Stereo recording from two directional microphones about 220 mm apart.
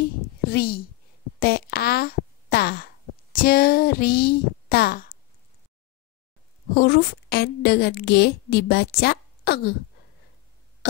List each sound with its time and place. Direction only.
0.5 s a woman's voice: 45° left (ahead or behind)
6.7 s a woman's voice: 45° left (ahead or behind)